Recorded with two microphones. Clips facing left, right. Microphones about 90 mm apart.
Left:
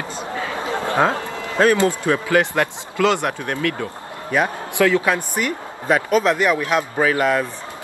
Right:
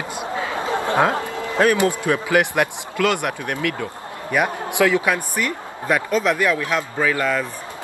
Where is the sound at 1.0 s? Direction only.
20° right (ahead or behind).